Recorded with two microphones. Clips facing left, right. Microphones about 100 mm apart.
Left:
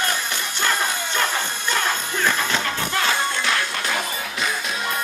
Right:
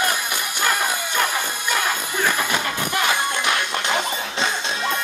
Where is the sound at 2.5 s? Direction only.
15° right (ahead or behind).